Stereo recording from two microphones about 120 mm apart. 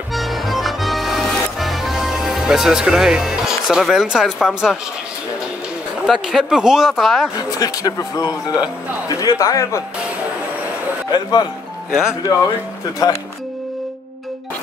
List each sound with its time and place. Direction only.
0.1 s music: centre (ahead or behind)
6.0 s speech: 5° right (ahead or behind)
7.3 s speech: 30° left (ahead or behind)
11.1 s speech: 35° left (ahead or behind)
11.9 s speech: 5° right (ahead or behind)
13.0 s speech: 30° left (ahead or behind)